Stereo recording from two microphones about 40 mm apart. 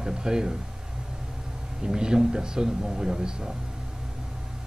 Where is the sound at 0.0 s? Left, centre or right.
Centre.